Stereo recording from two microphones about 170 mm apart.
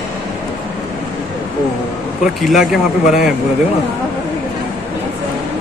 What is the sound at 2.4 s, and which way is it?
Speech, centre (ahead or behind).